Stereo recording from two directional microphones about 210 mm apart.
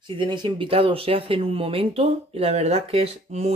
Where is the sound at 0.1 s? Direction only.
20° right (ahead or behind).